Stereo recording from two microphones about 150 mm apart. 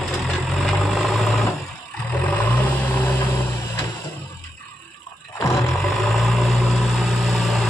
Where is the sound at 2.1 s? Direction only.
10° left (ahead or behind).